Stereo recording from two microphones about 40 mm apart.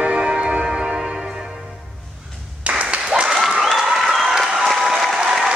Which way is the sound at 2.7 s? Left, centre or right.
Right.